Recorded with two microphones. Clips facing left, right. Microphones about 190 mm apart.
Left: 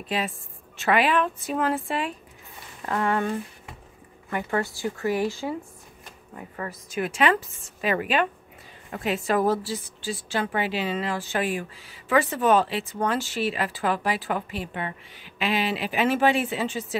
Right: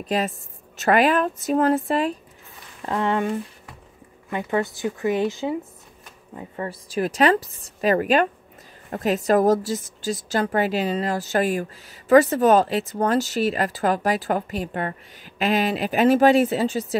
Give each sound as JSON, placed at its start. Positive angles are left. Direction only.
{"t": 0.0, "sound": "a woman's voice", "side_deg": -40}
{"t": 2.8, "sound": "a woman's voice", "side_deg": -25}